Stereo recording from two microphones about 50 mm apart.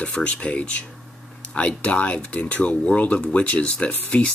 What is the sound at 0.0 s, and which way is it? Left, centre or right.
Speech, left.